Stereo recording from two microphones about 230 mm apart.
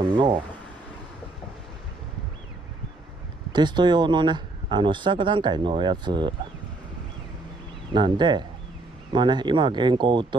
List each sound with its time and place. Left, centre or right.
0.1 s speech: right
3.5 s speech: centre
7.9 s speech: centre